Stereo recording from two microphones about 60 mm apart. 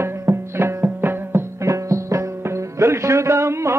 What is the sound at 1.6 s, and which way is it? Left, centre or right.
Music, right.